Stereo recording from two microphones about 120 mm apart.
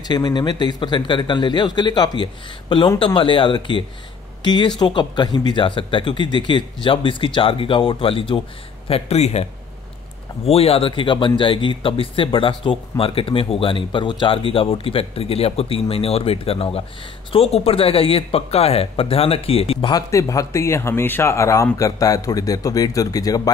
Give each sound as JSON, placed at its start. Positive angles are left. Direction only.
{"t": 0.1, "sound": "speech", "side_deg": 35}
{"t": 19.9, "sound": "speech", "side_deg": 30}